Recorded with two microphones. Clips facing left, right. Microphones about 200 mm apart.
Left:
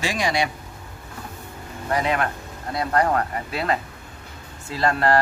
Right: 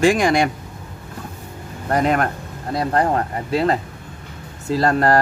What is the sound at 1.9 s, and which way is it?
Speech, 50° right (ahead or behind).